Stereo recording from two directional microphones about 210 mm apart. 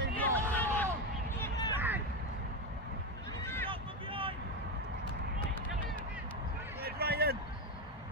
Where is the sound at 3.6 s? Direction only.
25° right (ahead or behind).